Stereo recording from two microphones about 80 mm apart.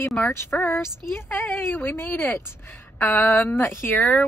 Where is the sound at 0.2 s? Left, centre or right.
Left.